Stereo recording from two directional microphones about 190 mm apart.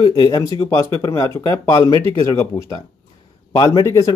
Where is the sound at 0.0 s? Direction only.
20° left (ahead or behind).